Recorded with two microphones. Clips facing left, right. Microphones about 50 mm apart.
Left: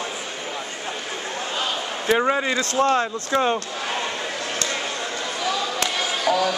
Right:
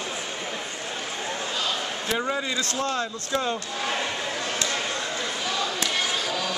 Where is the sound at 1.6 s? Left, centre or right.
Left.